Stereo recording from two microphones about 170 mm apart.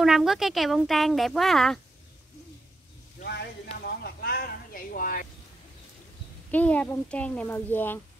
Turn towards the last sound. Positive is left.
turn(degrees=10)  # may be behind; listen again after turning